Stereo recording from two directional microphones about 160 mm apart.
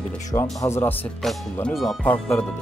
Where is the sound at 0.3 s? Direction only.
20° left (ahead or behind).